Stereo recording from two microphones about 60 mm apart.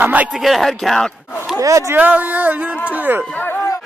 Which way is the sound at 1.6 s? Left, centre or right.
Right.